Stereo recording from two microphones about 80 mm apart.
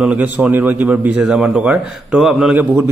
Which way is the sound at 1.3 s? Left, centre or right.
Centre.